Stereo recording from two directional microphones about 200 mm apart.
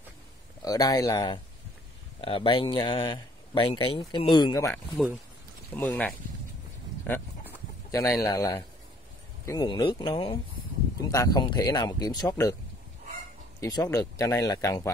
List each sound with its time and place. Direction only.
0.7 s speech: 20° left (ahead or behind)
5.8 s speech: 10° left (ahead or behind)
7.9 s speech: 15° left (ahead or behind)
13.6 s speech: 20° left (ahead or behind)